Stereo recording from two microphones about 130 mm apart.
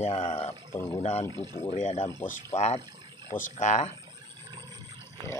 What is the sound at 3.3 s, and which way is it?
Speech, 80° left.